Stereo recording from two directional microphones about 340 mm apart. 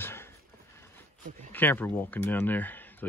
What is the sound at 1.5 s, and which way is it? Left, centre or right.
Speech, centre.